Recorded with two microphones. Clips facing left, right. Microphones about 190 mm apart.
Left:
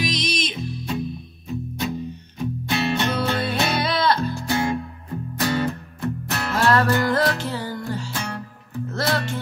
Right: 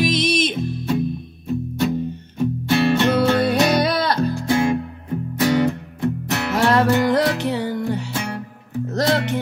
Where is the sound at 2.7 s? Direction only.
55° right (ahead or behind).